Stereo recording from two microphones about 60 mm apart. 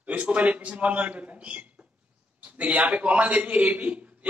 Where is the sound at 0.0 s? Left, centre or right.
Right.